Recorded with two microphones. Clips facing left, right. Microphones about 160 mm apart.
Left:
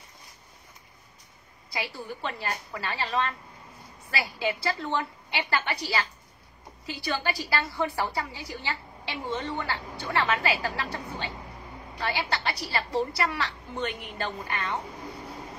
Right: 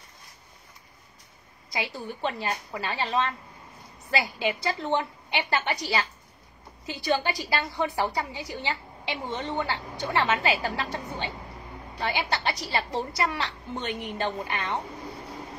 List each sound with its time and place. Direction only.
1.7 s a woman's voice: 20° right (ahead or behind)